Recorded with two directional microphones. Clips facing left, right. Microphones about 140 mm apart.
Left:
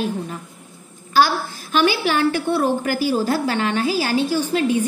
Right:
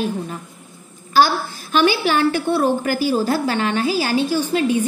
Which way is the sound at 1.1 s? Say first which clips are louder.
Right 1 dB; 30° right (ahead or behind).